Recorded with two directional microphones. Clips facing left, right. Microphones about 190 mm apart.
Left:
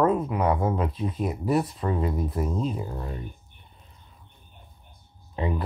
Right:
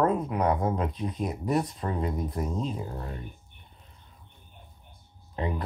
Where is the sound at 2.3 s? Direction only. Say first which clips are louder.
Left 3 dB; 5° left (ahead or behind).